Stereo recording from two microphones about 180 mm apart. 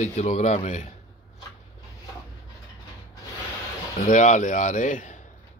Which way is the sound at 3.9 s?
45° left (ahead or behind).